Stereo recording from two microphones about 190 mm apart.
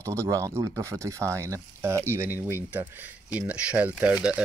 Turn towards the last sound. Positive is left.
turn(degrees=-5)  # may be behind; listen again after turning